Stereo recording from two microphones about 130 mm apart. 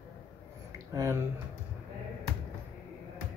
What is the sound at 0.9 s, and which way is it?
Speech, 25° right (ahead or behind).